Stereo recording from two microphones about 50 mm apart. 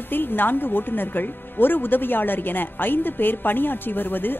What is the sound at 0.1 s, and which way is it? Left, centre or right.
Speech, left.